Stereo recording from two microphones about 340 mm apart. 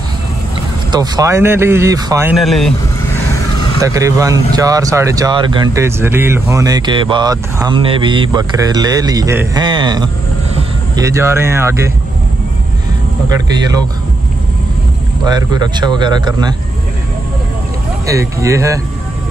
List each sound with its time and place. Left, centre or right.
0.9 s speech: centre
3.8 s speech: centre
13.3 s speech: centre
15.2 s speech: centre
18.0 s speech: centre